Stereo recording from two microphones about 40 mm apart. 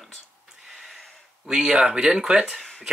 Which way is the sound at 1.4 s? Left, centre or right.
Centre.